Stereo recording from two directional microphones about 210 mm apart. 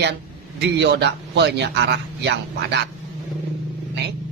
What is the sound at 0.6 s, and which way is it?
A woman's voice, 55° right (ahead or behind).